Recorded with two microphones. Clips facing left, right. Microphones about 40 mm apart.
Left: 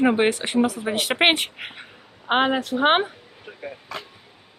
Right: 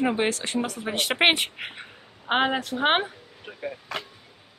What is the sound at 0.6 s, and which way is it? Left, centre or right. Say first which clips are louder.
A woman's voice: left 4 dB; centre.